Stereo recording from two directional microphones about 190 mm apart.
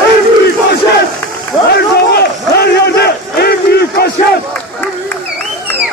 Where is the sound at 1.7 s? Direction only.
55° left (ahead or behind).